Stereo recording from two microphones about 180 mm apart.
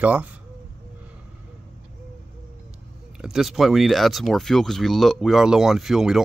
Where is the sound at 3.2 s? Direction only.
Centre (ahead or behind).